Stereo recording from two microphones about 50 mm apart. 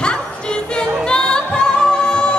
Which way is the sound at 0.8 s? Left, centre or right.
Centre.